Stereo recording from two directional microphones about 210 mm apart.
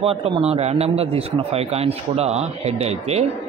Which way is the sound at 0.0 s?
25° right (ahead or behind).